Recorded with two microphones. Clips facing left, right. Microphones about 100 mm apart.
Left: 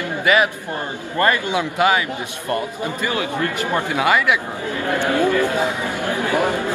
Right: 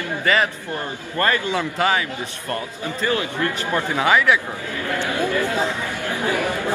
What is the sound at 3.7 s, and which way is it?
Speech, 10° left (ahead or behind).